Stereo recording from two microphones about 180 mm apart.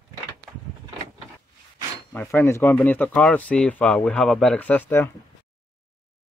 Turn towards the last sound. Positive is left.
turn(degrees=10)  # may be behind; listen again after turning